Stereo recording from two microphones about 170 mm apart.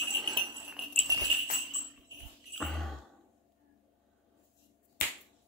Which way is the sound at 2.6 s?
Centre (ahead or behind).